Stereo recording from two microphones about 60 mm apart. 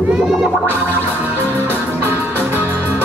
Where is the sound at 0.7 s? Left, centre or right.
Right.